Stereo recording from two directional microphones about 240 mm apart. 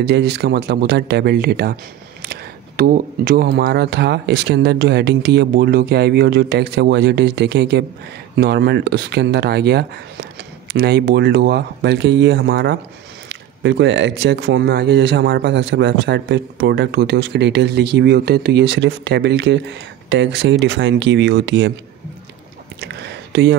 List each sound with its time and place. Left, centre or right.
0.0 s speech: right
22.8 s whispering: right